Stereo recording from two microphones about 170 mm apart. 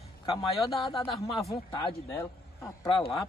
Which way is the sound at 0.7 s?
30° left (ahead or behind).